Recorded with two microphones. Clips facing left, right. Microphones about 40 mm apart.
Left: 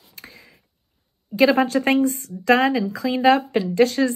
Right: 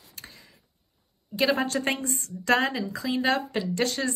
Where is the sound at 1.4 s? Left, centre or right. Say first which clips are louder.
Left 8 dB; left.